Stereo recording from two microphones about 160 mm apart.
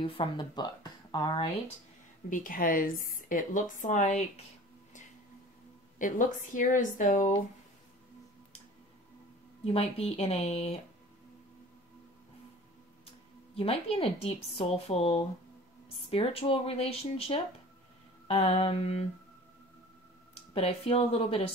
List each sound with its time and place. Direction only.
0.0 s speech: 35° left (ahead or behind)
2.2 s speech: 55° left (ahead or behind)
5.9 s a woman's voice: 55° left (ahead or behind)
9.7 s speech: 40° left (ahead or behind)
13.6 s speech: 35° left (ahead or behind)
20.5 s speech: 40° left (ahead or behind)